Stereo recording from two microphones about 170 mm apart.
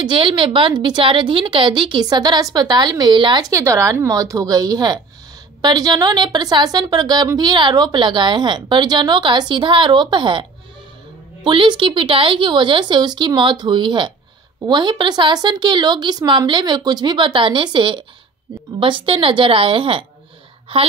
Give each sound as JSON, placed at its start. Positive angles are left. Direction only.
{"t": 0.0, "sound": "a woman's voice", "side_deg": -30}
{"t": 11.4, "sound": "a woman's voice", "side_deg": -30}